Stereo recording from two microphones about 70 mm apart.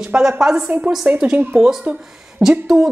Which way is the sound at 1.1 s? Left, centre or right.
Centre.